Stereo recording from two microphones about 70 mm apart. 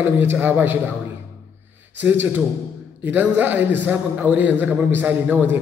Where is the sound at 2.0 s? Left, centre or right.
Right.